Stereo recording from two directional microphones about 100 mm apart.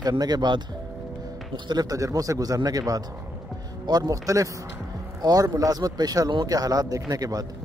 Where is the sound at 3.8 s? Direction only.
40° right (ahead or behind).